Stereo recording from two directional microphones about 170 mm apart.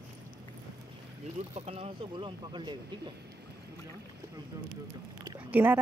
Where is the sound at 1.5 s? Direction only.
40° right (ahead or behind).